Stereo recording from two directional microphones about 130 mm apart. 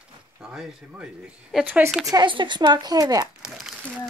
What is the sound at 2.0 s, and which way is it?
Speech, 35° right (ahead or behind).